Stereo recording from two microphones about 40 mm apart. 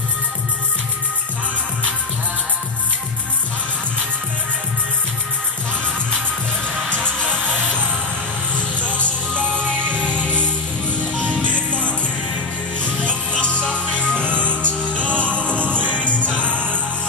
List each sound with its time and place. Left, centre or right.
8.5 s music: right
8.9 s music: left
9.8 s music: right
11.5 s music: left
13.3 s music: left
14.2 s music: right